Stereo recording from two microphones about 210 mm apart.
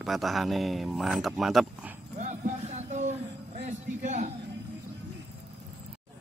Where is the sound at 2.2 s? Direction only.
35° right (ahead or behind).